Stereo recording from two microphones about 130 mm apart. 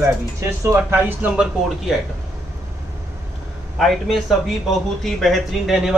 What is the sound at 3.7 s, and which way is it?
Speech, centre (ahead or behind).